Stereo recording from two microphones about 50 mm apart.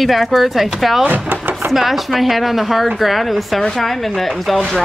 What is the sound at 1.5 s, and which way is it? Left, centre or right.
Chopping, right.